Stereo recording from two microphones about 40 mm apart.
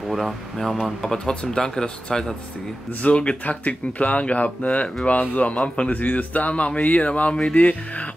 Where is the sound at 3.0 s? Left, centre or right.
Left.